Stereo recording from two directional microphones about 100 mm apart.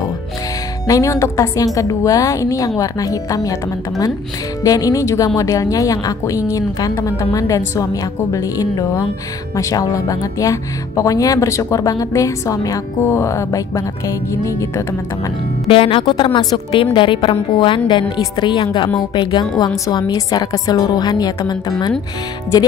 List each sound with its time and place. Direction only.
0.8 s speech: 35° left (ahead or behind)
4.6 s speech: 35° left (ahead or behind)
15.7 s speech: 60° left (ahead or behind); by 21.9 s 40° left (ahead or behind)